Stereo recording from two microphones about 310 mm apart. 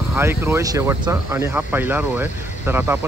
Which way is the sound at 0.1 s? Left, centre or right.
Centre.